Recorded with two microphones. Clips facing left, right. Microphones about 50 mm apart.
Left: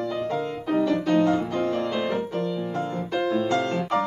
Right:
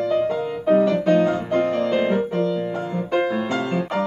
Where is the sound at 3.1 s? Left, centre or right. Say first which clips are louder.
Right 2 dB; right.